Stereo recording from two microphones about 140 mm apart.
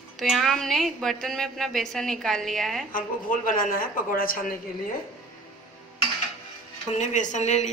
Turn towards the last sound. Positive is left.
turn(degrees=55)  # may be behind; listen again after turning